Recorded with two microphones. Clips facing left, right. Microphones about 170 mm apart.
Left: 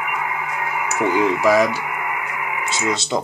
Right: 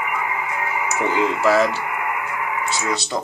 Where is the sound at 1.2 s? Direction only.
15° left (ahead or behind).